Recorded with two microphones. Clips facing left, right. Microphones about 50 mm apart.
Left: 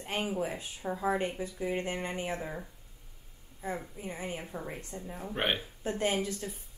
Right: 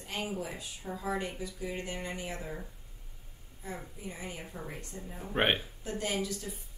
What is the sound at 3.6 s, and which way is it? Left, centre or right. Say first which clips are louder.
Speech: left 5 dB; left.